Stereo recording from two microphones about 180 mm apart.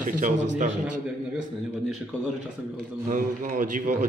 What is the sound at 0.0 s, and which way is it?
Speech, 45° right (ahead or behind).